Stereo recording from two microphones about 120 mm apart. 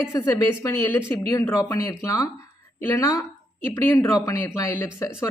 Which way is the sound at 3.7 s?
20° left (ahead or behind).